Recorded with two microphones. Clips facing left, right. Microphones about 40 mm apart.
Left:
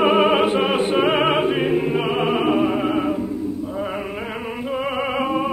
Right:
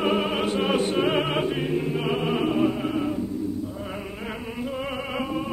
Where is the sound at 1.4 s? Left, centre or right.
Left.